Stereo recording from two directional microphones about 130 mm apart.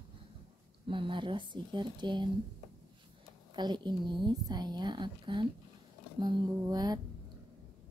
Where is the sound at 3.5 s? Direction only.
35° right (ahead or behind).